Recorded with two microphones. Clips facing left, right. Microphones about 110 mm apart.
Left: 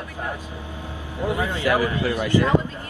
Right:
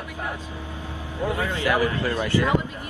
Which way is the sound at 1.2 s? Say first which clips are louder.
Left 2 dB; 20° left (ahead or behind).